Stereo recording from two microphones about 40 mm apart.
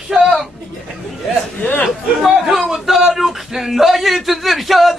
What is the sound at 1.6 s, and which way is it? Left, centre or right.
Speech, left.